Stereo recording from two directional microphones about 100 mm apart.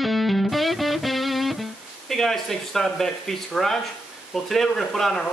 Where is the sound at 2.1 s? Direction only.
5° left (ahead or behind).